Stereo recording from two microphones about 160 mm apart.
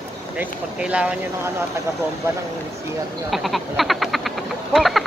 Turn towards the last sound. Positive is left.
turn(degrees=0)  # may be behind; listen again after turning